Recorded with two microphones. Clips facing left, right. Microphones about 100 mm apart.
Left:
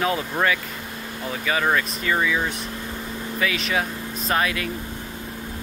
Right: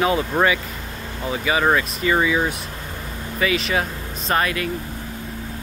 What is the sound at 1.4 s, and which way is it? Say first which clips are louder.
Speech: right 3 dB; 10° right (ahead or behind).